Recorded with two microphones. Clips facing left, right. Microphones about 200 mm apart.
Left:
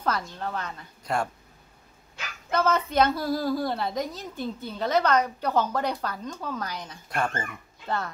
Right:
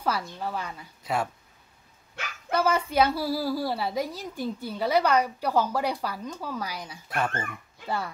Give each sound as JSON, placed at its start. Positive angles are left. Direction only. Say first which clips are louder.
{"t": 0.0, "sound": "a woman's voice", "louder": "even", "side_deg": -10}
{"t": 2.5, "sound": "a woman's voice", "louder": "even", "side_deg": -10}